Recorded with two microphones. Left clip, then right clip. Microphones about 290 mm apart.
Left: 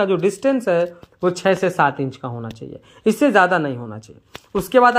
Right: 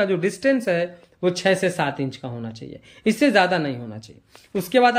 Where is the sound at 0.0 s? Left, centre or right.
Centre.